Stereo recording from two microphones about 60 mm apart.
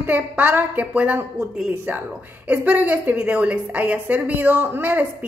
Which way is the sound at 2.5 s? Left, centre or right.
Right.